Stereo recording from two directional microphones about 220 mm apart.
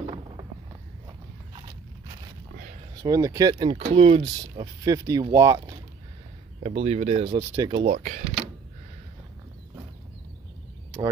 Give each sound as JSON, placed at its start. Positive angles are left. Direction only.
{"t": 3.0, "sound": "speech", "side_deg": -15}
{"t": 6.6, "sound": "speech", "side_deg": -30}
{"t": 7.9, "sound": "speech", "side_deg": -35}